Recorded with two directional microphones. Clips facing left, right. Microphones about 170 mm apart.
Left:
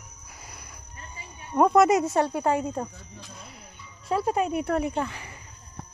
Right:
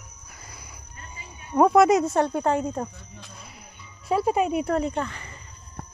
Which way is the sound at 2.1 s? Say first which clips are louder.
Right 1 dB; 10° left (ahead or behind).